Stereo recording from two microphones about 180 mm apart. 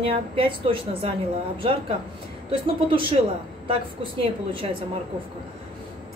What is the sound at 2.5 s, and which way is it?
Speech, 30° right (ahead or behind).